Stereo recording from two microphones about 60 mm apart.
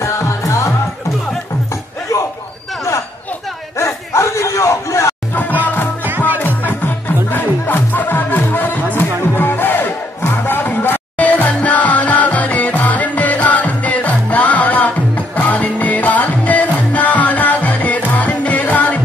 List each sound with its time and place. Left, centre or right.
0.0 s music: left
2.1 s a sound: left
3.7 s a sound: left
5.3 s music: left
6.0 s music: right
6.4 s music: left